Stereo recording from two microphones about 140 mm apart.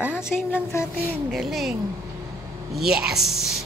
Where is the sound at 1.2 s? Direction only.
Centre (ahead or behind).